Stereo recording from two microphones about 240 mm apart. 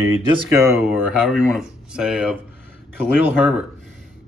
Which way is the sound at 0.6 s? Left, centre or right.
Centre.